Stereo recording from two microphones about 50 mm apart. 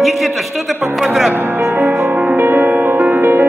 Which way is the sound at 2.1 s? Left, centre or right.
Right.